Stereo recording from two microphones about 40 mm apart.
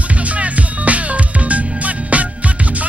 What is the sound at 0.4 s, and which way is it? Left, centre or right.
Music, right.